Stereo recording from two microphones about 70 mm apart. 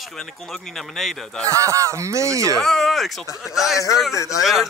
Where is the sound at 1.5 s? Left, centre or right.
Right.